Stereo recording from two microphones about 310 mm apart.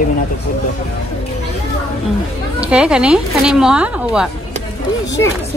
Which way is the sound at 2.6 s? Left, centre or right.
Centre.